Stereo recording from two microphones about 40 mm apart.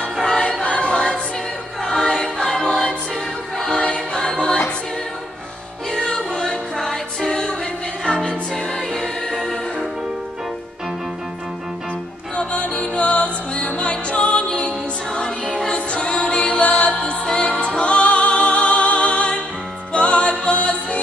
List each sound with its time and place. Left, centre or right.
0.4 s choir: left
1.9 s choir: centre
2.5 s music: centre
3.7 s choir: left
5.9 s music: centre
9.3 s music: centre
12.4 s music: left
15.9 s music: left